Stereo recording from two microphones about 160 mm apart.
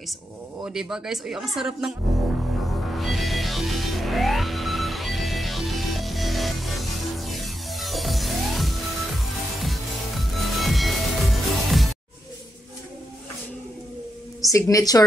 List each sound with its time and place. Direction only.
0.7 s speech: 5° right (ahead or behind)
2.9 s music: centre (ahead or behind)
14.4 s a woman's voice: 20° left (ahead or behind)